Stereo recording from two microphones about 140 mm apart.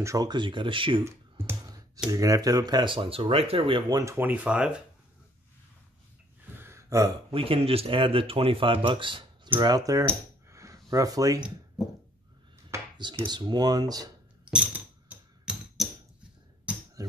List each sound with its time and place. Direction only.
0.0 s speech: 25° right (ahead or behind)
1.4 s computer keyboard: 20° right (ahead or behind)
2.0 s speech: 25° right (ahead or behind)
4.0 s speech: 15° right (ahead or behind)
6.5 s a sound: 15° right (ahead or behind)
7.2 s speech: 40° right (ahead or behind); by 11.4 s 25° right (ahead or behind)
12.7 s a sound: 30° right (ahead or behind)
13.2 s speech: 35° right (ahead or behind)
15.0 s a sound: 5° right (ahead or behind)